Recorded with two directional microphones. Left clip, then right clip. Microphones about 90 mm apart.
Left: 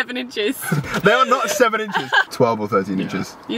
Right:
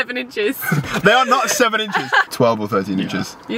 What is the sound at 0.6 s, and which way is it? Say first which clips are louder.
Speech: right 2 dB; 5° right (ahead or behind).